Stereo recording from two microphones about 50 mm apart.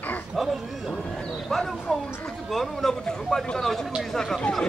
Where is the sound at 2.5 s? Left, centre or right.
Centre.